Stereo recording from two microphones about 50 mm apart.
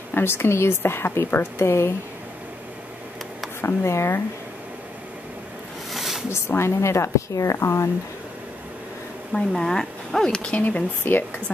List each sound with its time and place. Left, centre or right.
0.1 s a woman's voice: left
3.6 s a woman's voice: left
5.9 s a sound: centre
6.3 s a woman's voice: left
9.3 s speech: centre
10.5 s speech: left
11.1 s speech: left